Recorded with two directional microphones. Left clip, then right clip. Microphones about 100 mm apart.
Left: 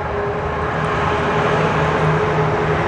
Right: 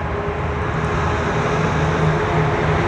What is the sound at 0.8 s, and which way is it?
Vehicle, 30° left (ahead or behind).